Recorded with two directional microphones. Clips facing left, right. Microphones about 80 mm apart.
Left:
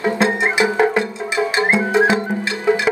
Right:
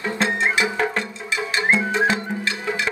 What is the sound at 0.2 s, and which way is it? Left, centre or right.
Music, centre.